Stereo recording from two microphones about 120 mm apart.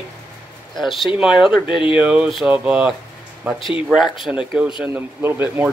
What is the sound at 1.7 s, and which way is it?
Speech, 45° left (ahead or behind).